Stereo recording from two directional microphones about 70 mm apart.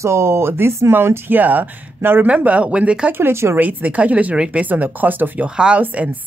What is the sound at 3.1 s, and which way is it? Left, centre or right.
Speech, right.